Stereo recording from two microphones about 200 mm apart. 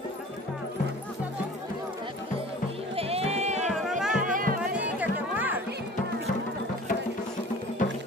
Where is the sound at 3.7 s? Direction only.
Centre (ahead or behind).